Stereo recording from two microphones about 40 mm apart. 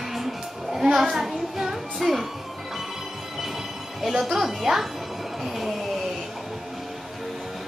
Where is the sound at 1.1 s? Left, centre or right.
Centre.